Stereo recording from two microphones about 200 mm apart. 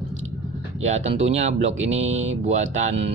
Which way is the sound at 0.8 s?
35° right (ahead or behind).